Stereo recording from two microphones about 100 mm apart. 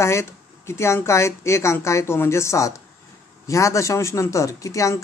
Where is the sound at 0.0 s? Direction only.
25° left (ahead or behind).